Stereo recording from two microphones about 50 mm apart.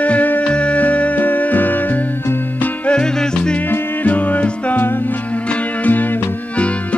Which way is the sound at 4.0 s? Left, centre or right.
Left.